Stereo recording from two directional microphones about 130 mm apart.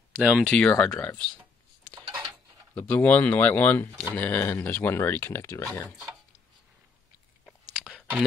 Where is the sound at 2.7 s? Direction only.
10° left (ahead or behind).